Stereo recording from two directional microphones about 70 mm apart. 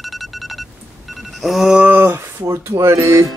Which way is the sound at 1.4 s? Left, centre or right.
Centre.